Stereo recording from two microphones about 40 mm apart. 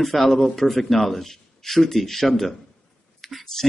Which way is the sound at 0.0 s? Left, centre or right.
Centre.